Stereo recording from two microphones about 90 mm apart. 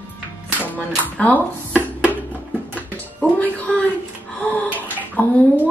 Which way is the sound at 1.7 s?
20° right (ahead or behind).